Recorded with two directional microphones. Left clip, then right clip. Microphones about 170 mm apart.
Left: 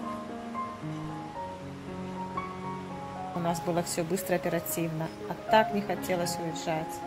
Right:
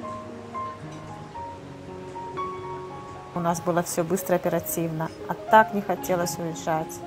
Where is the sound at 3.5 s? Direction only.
15° right (ahead or behind).